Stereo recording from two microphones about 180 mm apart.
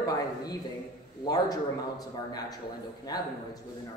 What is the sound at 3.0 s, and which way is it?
Speech, 20° left (ahead or behind).